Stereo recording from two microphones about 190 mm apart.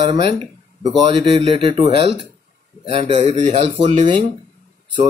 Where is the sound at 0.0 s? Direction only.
30° right (ahead or behind).